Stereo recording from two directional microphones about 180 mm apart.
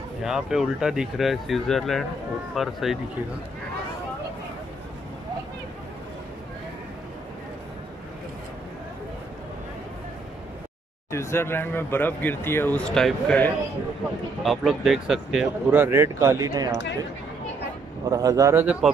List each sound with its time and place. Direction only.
0.2 s speech: centre (ahead or behind)
11.1 s speech: 15° left (ahead or behind); by 16.7 s 20° right (ahead or behind)
18.1 s speech: 20° right (ahead or behind)